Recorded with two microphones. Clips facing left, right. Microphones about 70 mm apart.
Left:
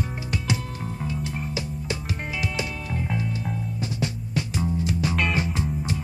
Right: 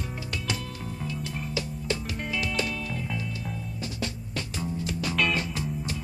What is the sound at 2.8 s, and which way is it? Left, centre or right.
Music, left.